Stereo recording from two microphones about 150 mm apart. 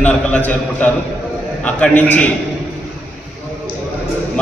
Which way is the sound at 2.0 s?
10° left (ahead or behind).